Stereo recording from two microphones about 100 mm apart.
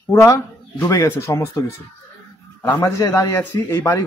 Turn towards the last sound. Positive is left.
turn(degrees=25)  # may be behind; listen again after turning